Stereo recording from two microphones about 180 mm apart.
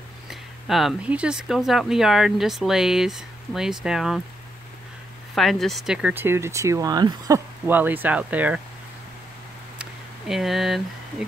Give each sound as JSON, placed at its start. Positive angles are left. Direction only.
{"t": 0.3, "sound": "speech", "side_deg": 0}
{"t": 5.3, "sound": "speech", "side_deg": 0}
{"t": 9.8, "sound": "a sound", "side_deg": 0}